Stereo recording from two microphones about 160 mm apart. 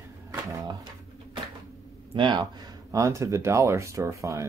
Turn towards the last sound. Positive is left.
turn(degrees=-20)  # may be behind; listen again after turning